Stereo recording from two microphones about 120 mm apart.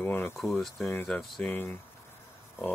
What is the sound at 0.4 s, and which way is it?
Speech, centre (ahead or behind).